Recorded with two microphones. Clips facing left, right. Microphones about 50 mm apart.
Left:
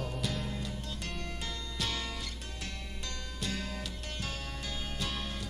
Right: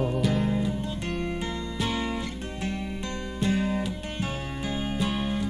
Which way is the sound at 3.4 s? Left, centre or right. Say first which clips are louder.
Right 13 dB; right.